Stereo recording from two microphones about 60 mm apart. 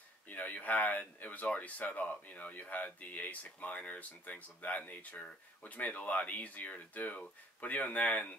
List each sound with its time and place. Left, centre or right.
0.3 s speech: left